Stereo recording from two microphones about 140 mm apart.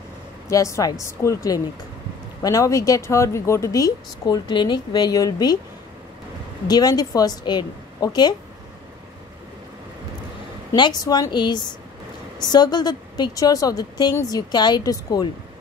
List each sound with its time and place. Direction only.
0.5 s speech: 25° left (ahead or behind)
6.7 s speech: 25° left (ahead or behind)
10.8 s a woman's voice: 30° left (ahead or behind)